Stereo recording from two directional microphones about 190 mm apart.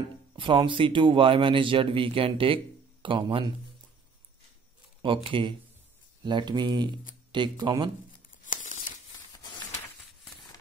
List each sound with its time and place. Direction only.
0.4 s speech: 25° right (ahead or behind)
5.0 s speech: 25° right (ahead or behind)
8.3 s tearing: 40° left (ahead or behind)